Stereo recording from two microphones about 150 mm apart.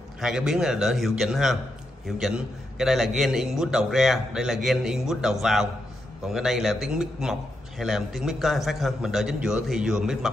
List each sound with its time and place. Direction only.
0.2 s a man's voice: 5° right (ahead or behind)